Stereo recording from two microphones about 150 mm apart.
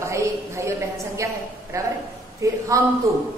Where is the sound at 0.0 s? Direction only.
20° right (ahead or behind).